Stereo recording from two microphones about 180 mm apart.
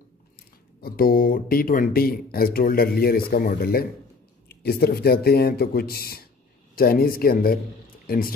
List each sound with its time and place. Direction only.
0.7 s speech: 55° left (ahead or behind)